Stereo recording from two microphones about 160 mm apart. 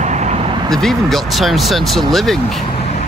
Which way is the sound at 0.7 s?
Centre (ahead or behind).